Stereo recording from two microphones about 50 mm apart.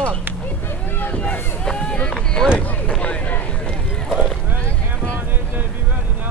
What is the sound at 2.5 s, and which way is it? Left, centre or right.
Speech, left.